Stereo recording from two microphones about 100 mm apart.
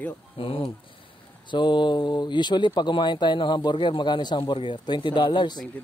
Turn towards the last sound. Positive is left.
turn(degrees=50)  # may be behind; listen again after turning